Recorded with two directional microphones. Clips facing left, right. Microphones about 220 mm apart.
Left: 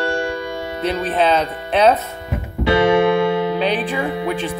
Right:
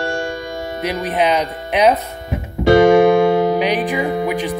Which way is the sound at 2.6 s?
45° right (ahead or behind).